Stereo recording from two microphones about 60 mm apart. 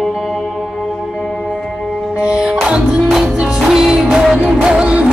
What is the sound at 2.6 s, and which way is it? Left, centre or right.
Music, centre.